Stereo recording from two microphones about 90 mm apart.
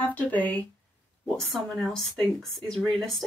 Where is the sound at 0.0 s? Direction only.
15° left (ahead or behind).